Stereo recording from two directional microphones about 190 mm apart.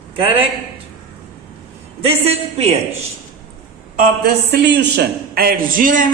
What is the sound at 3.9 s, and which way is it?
A man's voice, 55° right (ahead or behind).